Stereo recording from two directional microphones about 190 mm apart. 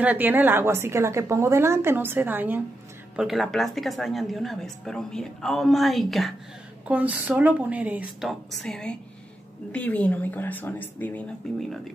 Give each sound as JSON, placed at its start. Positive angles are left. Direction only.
{"t": 0.0, "sound": "a woman's voice", "side_deg": -10}